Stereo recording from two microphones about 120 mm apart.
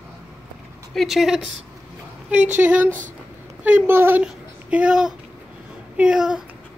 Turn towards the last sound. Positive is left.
turn(degrees=-5)  # may be behind; listen again after turning